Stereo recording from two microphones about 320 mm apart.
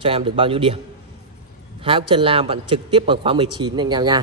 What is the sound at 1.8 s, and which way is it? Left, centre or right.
A man's voice, centre.